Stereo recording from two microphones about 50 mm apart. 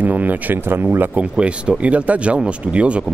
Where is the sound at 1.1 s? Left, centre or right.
Right.